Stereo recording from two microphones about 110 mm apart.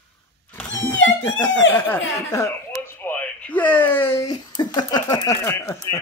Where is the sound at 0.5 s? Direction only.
20° left (ahead or behind).